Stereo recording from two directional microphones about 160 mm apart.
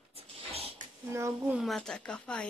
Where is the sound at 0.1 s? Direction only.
40° right (ahead or behind).